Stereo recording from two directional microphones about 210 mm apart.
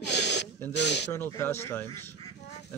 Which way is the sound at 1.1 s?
10° left (ahead or behind).